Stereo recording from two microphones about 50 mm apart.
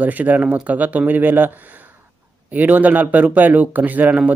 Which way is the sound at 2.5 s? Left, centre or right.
Right.